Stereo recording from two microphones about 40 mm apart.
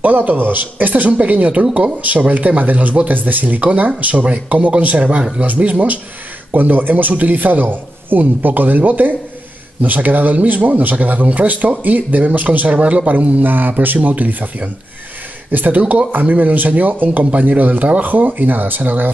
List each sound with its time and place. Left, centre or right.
0.0 s speech: right
6.5 s speech: right
13.5 s speech: right
15.5 s speech: right